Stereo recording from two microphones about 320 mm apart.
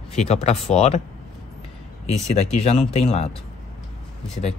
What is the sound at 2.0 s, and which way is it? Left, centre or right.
Speech, centre.